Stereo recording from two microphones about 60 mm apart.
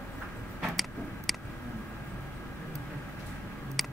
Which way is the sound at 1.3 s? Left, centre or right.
Centre.